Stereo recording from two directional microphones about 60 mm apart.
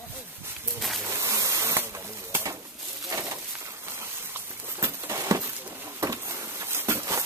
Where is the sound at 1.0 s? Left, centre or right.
Right.